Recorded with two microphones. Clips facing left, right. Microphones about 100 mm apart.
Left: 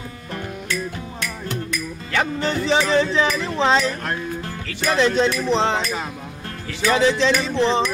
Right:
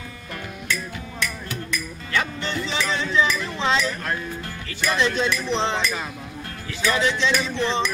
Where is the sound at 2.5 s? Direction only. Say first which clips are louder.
Left 8 dB; 35° left (ahead or behind).